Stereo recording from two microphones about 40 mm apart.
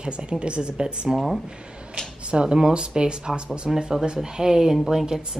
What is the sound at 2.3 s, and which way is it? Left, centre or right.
Speech, right.